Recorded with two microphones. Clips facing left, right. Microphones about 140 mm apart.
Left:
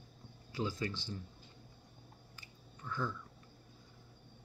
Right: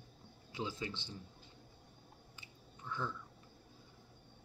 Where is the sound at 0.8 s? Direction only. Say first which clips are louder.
Left 4 dB; 20° right (ahead or behind).